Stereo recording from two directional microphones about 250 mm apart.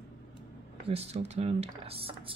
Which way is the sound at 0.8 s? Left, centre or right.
Right.